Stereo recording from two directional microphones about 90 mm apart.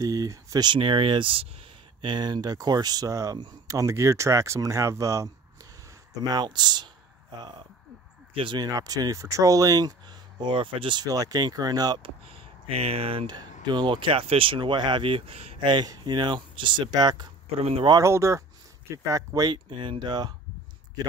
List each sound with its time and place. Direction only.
0.0 s speech: 40° right (ahead or behind)
0.7 s speech: 70° right (ahead or behind)
2.0 s speech: 60° right (ahead or behind); by 5.7 s 35° right (ahead or behind)
6.3 s speech: 50° right (ahead or behind)
8.5 s speech: 45° right (ahead or behind); by 11.1 s 65° right (ahead or behind)
11.1 s speech: 40° right (ahead or behind)
12.0 s speech: 90° right
13.3 s speech: 50° right (ahead or behind)
18.0 s speech: 35° right (ahead or behind)
19.5 s speech: 70° right (ahead or behind)